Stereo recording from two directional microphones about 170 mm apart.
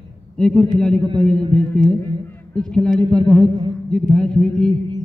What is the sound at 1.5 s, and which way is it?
Music, 5° left (ahead or behind).